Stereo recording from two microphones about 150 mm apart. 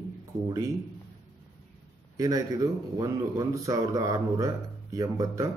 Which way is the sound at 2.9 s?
25° right (ahead or behind).